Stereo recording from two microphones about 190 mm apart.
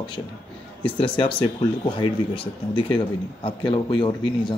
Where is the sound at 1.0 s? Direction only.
25° left (ahead or behind).